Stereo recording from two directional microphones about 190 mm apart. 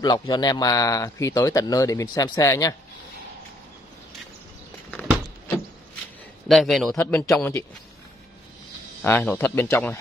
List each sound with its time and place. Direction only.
0.0 s speech: 20° left (ahead or behind)
6.5 s a man's voice: centre (ahead or behind)
9.0 s speech: 10° left (ahead or behind)